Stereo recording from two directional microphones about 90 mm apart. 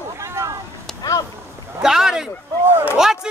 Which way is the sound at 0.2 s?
35° right (ahead or behind).